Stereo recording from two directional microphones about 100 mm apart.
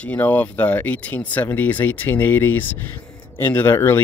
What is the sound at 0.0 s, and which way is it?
Speech, 15° left (ahead or behind).